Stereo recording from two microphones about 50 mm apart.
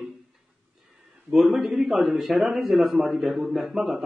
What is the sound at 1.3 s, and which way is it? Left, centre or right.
A man's voice, centre.